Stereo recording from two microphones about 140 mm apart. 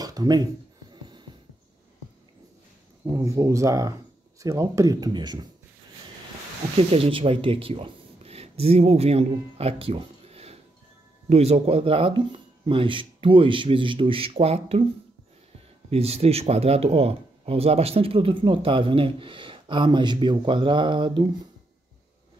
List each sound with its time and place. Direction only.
0.0 s speech: 25° right (ahead or behind)
3.1 s speech: 25° right (ahead or behind)
6.9 s speech: 40° right (ahead or behind)
15.9 s speech: 45° right (ahead or behind)